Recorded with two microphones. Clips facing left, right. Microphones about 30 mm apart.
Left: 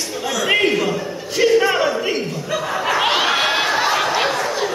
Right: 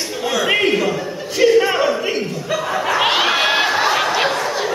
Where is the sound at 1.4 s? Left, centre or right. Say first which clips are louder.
Right 1 dB; centre.